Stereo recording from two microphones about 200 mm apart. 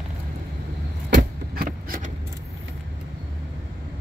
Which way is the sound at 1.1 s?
45° right (ahead or behind).